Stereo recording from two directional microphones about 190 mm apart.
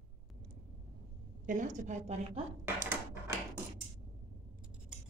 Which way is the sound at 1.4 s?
40° right (ahead or behind).